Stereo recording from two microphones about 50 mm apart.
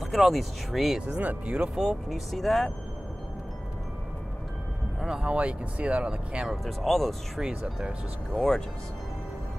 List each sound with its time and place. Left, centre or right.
0.0 s speech: centre
1.0 s speech: right
1.8 s speech: centre
2.3 s speech: centre
5.0 s speech: centre
6.5 s speech: centre
7.3 s speech: centre
8.4 s speech: centre